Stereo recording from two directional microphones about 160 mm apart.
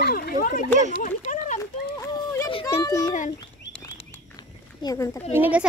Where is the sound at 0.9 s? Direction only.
55° left (ahead or behind).